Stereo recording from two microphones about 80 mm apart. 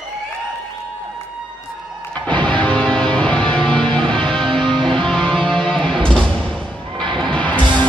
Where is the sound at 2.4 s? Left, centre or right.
Centre.